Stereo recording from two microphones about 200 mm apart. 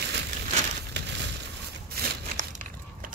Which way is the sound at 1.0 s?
55° right (ahead or behind).